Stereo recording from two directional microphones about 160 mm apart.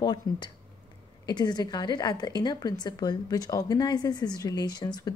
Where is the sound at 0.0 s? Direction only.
25° left (ahead or behind).